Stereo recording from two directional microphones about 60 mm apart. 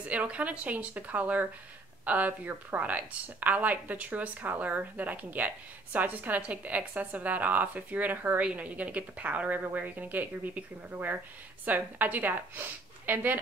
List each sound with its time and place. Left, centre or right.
0.1 s a woman's voice: right